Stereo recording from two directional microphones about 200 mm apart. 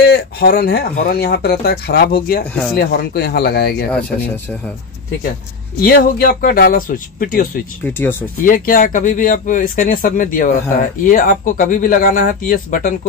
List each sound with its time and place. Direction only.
0.0 s speech: 50° left (ahead or behind)
5.8 s speech: 50° left (ahead or behind)
7.8 s speech: 10° left (ahead or behind)
8.5 s speech: 45° left (ahead or behind)